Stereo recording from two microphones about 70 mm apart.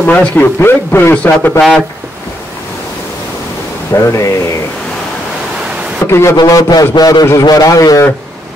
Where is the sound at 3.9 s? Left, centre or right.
Left.